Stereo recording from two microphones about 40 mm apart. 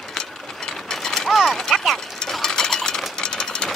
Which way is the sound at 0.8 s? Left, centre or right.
Centre.